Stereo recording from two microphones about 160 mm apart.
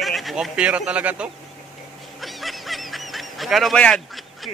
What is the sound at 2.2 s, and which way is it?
Honk, centre (ahead or behind).